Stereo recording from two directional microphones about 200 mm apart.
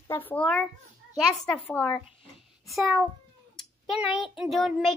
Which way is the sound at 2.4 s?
Centre (ahead or behind).